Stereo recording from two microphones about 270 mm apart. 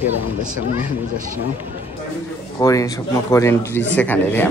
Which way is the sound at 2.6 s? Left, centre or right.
Centre.